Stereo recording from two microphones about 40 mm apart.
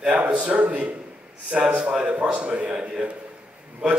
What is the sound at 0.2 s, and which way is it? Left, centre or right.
A man's voice, right.